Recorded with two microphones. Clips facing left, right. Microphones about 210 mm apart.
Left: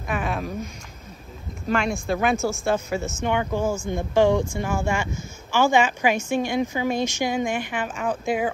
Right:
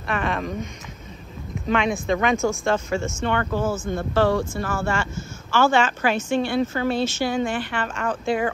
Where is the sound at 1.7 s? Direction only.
Centre (ahead or behind).